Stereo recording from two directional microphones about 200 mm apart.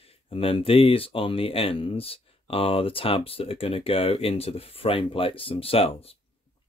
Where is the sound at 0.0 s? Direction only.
25° left (ahead or behind).